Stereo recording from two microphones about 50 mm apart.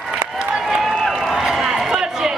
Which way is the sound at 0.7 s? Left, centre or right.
Centre.